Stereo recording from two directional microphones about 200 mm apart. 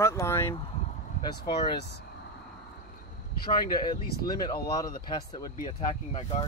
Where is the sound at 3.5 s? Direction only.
20° left (ahead or behind).